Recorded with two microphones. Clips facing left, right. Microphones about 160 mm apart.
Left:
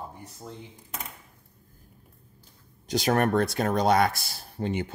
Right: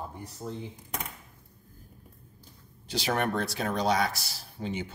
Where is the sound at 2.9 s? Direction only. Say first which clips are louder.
Left 6 dB; 45° left (ahead or behind).